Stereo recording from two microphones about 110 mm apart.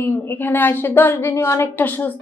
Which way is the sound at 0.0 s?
20° left (ahead or behind).